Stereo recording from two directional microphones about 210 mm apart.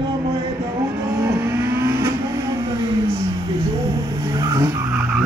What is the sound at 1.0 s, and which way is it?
Vehicle, 10° right (ahead or behind).